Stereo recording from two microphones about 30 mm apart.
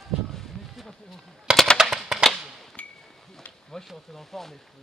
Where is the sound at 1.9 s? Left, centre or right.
Centre.